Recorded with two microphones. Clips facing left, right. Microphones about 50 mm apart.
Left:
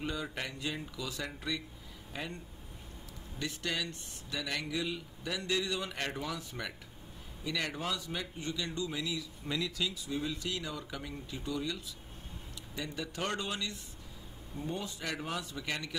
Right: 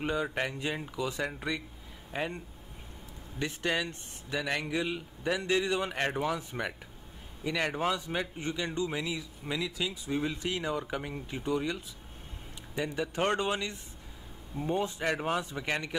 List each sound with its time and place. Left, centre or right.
0.0 s a man's voice: right
10.0 s a man's voice: right